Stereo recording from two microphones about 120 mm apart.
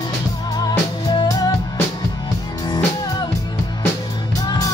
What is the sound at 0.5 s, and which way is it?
Music, 35° left (ahead or behind).